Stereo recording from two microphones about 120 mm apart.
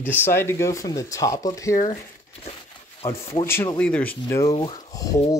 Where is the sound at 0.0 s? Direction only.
15° left (ahead or behind).